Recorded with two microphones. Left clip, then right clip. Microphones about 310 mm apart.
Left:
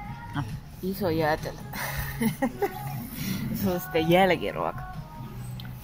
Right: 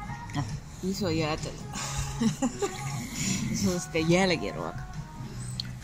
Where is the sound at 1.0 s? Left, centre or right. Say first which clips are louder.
Left 5 dB; left.